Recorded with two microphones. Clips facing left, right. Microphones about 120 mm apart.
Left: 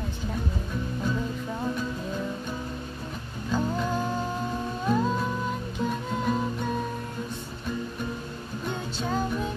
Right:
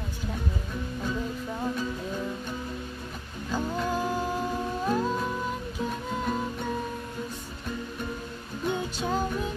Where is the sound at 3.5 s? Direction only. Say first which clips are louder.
Left 1 dB; 5° right (ahead or behind).